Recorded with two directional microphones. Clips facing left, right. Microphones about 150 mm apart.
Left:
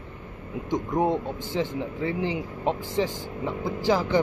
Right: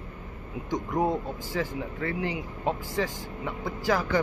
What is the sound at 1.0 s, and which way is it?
Speech, 25° left (ahead or behind).